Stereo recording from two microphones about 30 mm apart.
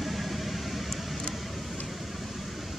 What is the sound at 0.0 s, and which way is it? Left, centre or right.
Vehicle, centre.